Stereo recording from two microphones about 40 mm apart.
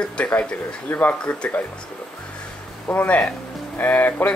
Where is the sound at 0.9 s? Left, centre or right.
Left.